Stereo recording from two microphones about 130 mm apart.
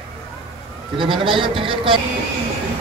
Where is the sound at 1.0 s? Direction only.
40° right (ahead or behind).